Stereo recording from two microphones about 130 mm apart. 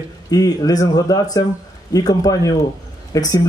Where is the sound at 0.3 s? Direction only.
30° left (ahead or behind).